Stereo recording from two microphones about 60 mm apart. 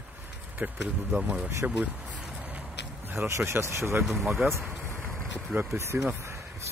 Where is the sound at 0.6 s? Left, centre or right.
Right.